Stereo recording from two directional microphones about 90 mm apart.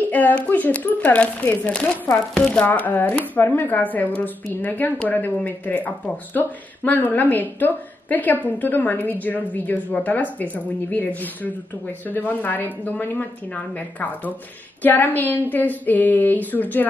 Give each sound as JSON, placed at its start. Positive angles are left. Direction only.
{"t": 0.1, "sound": "speech", "side_deg": 15}
{"t": 2.6, "sound": "speech", "side_deg": 20}